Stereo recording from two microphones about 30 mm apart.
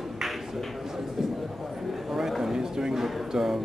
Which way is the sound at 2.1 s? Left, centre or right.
Centre.